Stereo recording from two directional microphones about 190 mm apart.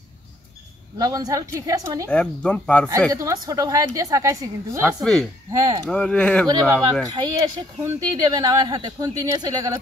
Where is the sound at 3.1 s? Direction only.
20° right (ahead or behind).